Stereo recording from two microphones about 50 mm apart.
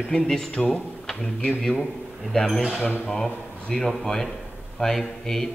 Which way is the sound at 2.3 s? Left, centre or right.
Centre.